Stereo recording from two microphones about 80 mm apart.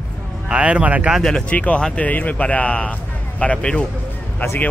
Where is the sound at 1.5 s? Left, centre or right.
Centre.